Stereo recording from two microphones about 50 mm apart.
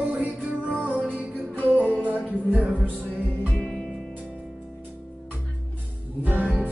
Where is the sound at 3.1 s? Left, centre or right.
Left.